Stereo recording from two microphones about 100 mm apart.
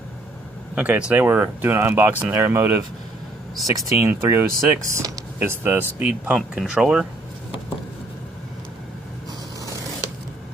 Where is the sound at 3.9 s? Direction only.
25° right (ahead or behind).